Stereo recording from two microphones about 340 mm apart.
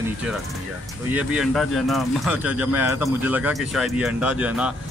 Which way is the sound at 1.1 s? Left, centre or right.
Centre.